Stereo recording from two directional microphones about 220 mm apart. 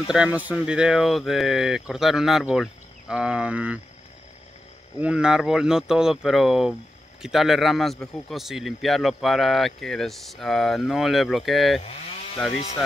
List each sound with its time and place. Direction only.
0.1 s speech: 5° right (ahead or behind)
4.9 s speech: 5° right (ahead or behind)
12.5 s speech: 30° left (ahead or behind)